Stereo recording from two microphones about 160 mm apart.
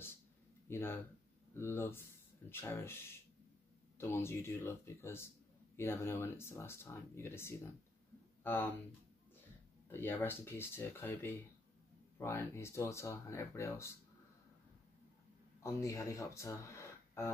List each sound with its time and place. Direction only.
0.7 s speech: 15° left (ahead or behind)
9.8 s speech: 15° left (ahead or behind)
15.6 s speech: 20° left (ahead or behind)